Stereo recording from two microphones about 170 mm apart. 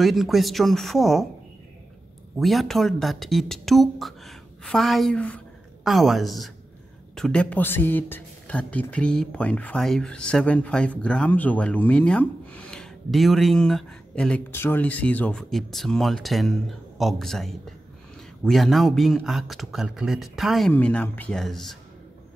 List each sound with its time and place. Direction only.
0.0 s a woman's voice: centre (ahead or behind)
2.3 s a woman's voice: centre (ahead or behind)